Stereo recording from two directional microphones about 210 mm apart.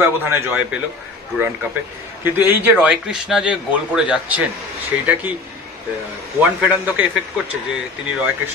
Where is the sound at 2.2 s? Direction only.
10° right (ahead or behind).